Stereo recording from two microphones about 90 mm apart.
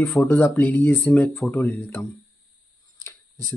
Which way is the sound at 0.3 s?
20° left (ahead or behind).